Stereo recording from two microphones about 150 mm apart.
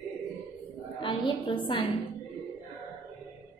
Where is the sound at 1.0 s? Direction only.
35° left (ahead or behind).